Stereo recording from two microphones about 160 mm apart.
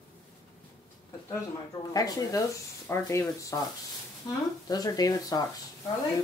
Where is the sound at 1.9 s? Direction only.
25° left (ahead or behind).